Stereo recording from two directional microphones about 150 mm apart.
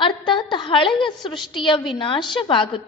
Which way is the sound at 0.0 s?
30° left (ahead or behind).